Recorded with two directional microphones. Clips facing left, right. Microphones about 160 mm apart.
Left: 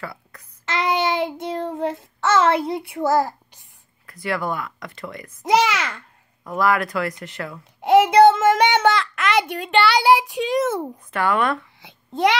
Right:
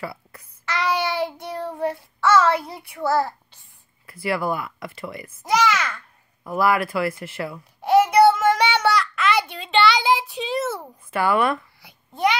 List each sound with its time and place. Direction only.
0.0 s a sound: 10° right (ahead or behind)
0.7 s child singing: 20° left (ahead or behind)
4.0 s speech: 5° right (ahead or behind)
5.5 s a child's voice: 15° left (ahead or behind)
6.4 s speech: 5° right (ahead or behind)
7.8 s child singing: 20° left (ahead or behind)
11.1 s speech: 5° right (ahead or behind)